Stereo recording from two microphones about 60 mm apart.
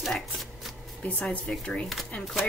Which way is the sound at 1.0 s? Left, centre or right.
Left.